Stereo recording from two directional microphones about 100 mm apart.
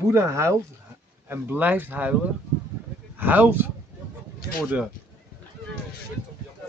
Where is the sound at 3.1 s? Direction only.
20° right (ahead or behind).